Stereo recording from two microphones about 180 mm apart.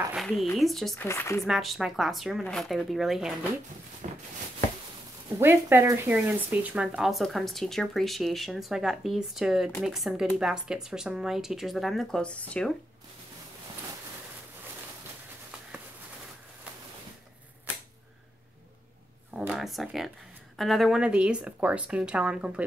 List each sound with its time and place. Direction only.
0.1 s speech: centre (ahead or behind)
0.9 s speech: 15° left (ahead or behind)
1.4 s speech: centre (ahead or behind)
4.0 s a sound: 40° right (ahead or behind)
5.4 s speech: 15° right (ahead or behind); by 12.7 s 5° left (ahead or behind)
19.3 s a sound: 5° right (ahead or behind)
20.5 s speech: centre (ahead or behind)